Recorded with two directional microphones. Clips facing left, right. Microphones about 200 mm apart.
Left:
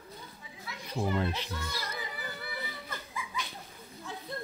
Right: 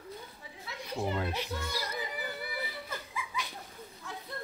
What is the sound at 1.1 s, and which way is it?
Speech, 10° right (ahead or behind).